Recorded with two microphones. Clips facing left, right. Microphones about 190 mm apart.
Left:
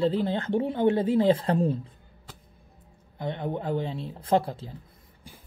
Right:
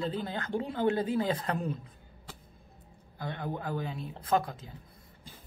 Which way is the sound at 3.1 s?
20° left (ahead or behind).